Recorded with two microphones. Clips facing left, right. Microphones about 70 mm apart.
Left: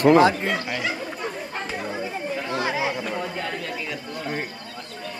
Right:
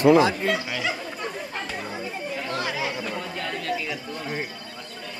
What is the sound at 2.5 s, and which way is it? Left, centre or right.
Chatter, left.